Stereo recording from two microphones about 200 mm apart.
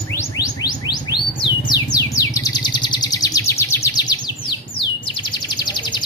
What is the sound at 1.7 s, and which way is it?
Bird, 15° left (ahead or behind).